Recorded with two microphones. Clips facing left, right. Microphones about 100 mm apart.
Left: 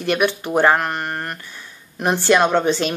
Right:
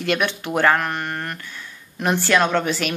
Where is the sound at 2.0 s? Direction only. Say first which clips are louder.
Left 3 dB; 20° left (ahead or behind).